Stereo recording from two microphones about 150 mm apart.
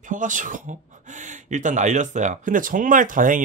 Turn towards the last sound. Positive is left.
turn(degrees=-60)  # may be behind; listen again after turning